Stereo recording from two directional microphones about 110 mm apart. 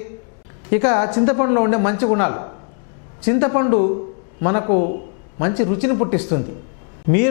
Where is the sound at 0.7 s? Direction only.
15° left (ahead or behind).